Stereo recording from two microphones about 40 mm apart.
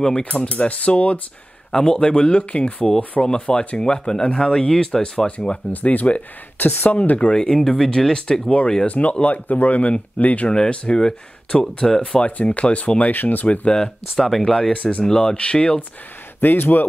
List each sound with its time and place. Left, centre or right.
0.2 s speech: left
1.7 s speech: centre
5.7 s speech: left
6.6 s speech: left
7.0 s speech: left
7.5 s speech: centre
8.8 s speech: left
10.5 s speech: left
12.2 s speech: left
13.1 s speech: left
14.1 s speech: centre
14.7 s speech: left
15.0 s speech: left
16.3 s speech: left